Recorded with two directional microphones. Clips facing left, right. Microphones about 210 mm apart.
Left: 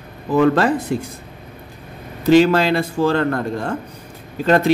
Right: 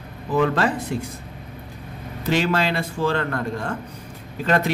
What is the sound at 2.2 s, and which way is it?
A man's voice, 35° left (ahead or behind).